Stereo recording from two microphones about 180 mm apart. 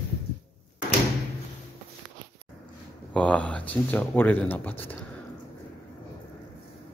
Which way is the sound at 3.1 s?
5° left (ahead or behind).